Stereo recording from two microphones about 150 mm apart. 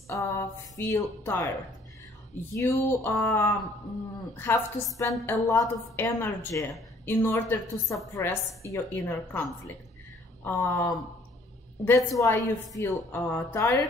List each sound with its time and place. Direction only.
0.1 s a woman's voice: 20° left (ahead or behind)
2.5 s a woman's voice: 20° left (ahead or behind)